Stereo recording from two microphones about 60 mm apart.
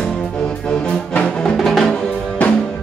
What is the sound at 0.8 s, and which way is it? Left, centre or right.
Music, centre.